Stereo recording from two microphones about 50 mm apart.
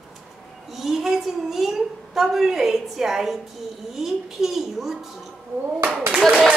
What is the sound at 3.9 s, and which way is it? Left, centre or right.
Speech, centre.